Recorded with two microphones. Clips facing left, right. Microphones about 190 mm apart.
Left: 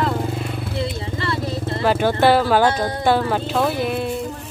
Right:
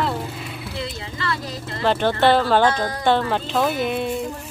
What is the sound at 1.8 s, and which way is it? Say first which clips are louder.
Speech: left 1 dB; 10° left (ahead or behind).